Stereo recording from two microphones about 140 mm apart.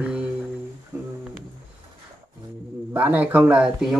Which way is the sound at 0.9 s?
15° right (ahead or behind).